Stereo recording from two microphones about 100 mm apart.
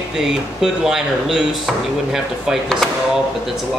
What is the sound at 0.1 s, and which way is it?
Speech, 5° right (ahead or behind).